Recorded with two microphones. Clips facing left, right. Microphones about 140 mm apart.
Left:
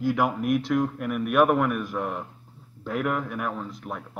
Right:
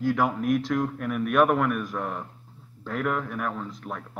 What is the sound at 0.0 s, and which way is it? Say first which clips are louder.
A man's voice: even; 5° left (ahead or behind).